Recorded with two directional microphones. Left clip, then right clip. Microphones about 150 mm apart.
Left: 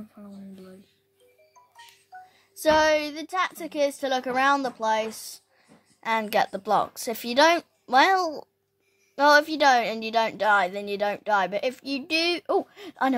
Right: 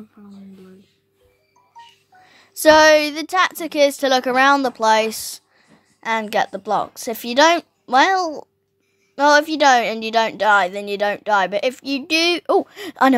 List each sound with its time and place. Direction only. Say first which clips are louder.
2.2 s a woman's voice: right 10 dB; 30° right (ahead or behind)
5.9 s a woman's voice: right 4 dB; 15° right (ahead or behind)